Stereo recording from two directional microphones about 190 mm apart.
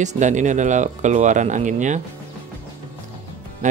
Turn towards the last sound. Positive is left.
turn(degrees=-40)  # may be behind; listen again after turning